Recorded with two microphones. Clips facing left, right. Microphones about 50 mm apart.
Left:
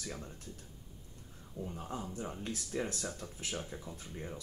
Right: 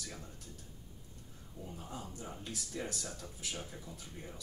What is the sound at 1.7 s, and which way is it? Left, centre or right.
Speech, left.